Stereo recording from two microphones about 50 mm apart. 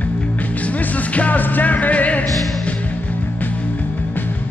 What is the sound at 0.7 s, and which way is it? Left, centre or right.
Music, left.